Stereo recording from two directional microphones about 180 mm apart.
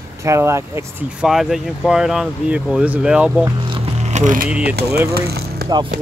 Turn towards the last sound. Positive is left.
turn(degrees=-60)  # may be behind; listen again after turning